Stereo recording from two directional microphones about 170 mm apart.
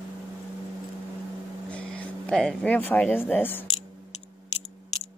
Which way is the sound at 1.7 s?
5° left (ahead or behind).